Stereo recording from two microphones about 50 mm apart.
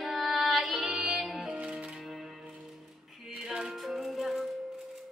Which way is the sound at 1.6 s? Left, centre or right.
Right.